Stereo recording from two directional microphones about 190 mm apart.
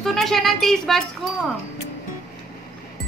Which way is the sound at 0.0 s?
Centre (ahead or behind).